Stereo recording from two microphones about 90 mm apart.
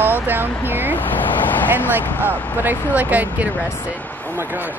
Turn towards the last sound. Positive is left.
turn(degrees=-20)  # may be behind; listen again after turning